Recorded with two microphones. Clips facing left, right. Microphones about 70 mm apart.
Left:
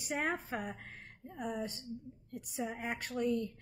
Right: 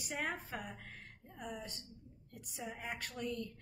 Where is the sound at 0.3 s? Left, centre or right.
Left.